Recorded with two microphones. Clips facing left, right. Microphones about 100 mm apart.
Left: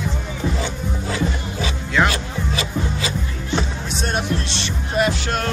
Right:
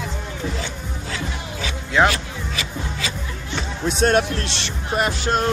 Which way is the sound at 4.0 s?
90° right.